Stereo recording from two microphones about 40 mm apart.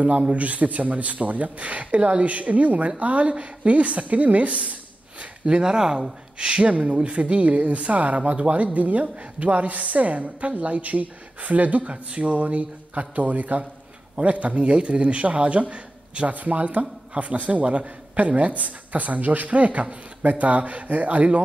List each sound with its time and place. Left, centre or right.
0.3 s a woman's voice: right
5.4 s a woman's voice: right